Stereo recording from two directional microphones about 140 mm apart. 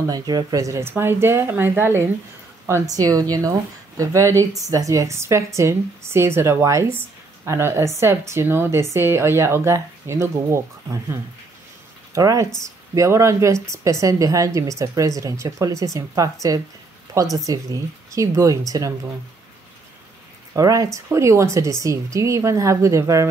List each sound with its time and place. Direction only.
0.0 s speech: 30° right (ahead or behind)
20.5 s speech: 25° right (ahead or behind)